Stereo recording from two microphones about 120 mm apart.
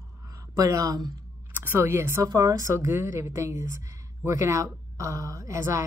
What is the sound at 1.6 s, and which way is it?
A woman's voice, 20° right (ahead or behind).